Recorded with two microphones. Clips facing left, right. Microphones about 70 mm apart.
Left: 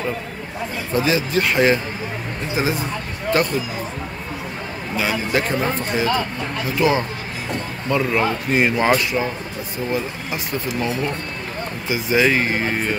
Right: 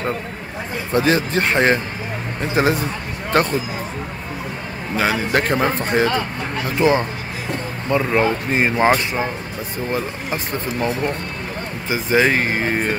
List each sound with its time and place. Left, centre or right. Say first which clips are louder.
0.9 s speech: right 2 dB; right
2.5 s speech: right 4 dB; right
4.9 s speech: right 2 dB; right
6.8 s speech: right 2 dB; right
7.9 s speech: right 2 dB; right